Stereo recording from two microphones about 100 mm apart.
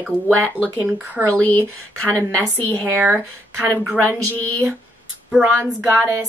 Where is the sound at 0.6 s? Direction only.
60° left (ahead or behind).